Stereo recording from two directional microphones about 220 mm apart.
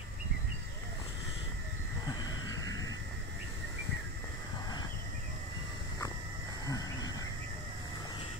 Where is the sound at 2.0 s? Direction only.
20° left (ahead or behind).